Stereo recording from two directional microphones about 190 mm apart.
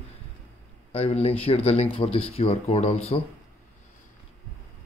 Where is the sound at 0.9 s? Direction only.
35° left (ahead or behind).